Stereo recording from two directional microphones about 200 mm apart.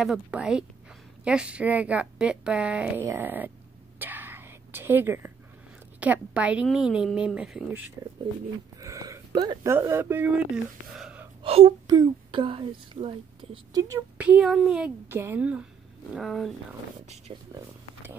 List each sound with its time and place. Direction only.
0.0 s a woman's voice: 5° right (ahead or behind)
4.0 s whispering: 10° right (ahead or behind)
5.9 s a woman's voice: 5° right (ahead or behind)
8.7 s speech: 15° right (ahead or behind)
11.4 s a woman's voice: 30° right (ahead or behind); by 16.5 s centre (ahead or behind)
17.3 s speech: 25° right (ahead or behind)